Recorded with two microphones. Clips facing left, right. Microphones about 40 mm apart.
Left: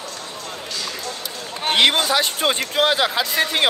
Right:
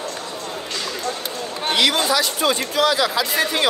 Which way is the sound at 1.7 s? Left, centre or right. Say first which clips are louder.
Left 1 dB; left.